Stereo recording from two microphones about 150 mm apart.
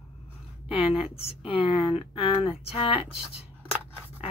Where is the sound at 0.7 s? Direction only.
40° left (ahead or behind).